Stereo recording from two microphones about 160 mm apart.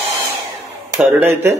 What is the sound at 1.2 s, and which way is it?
Speech, 15° right (ahead or behind).